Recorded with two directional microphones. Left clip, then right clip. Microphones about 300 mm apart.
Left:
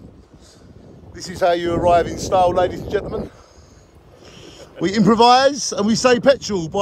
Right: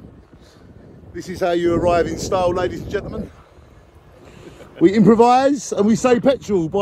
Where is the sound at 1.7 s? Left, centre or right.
Centre.